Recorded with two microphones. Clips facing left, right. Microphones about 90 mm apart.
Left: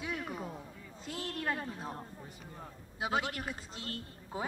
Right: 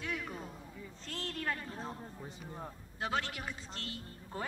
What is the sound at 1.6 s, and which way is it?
Speech, 10° left (ahead or behind).